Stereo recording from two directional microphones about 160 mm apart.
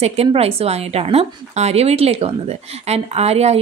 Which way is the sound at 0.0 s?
40° right (ahead or behind).